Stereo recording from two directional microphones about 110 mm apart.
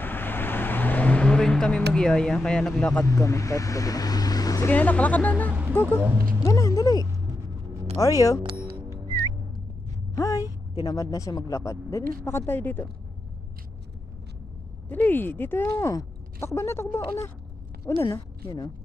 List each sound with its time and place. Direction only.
0.0 s vehicle: 20° left (ahead or behind)
3.1 s speech: 30° left (ahead or behind)
4.6 s speech: 15° left (ahead or behind)
5.5 s music: 15° right (ahead or behind)
6.4 s music: 30° left (ahead or behind)
8.0 s speech: 30° left (ahead or behind)
10.1 s a sound: 30° left (ahead or behind)
10.8 s speech: 35° left (ahead or behind)
14.9 s a woman's voice: 15° left (ahead or behind); by 18.7 s 35° left (ahead or behind)